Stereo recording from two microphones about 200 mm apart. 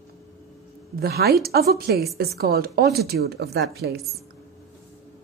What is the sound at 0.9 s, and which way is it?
Speech, 50° right (ahead or behind).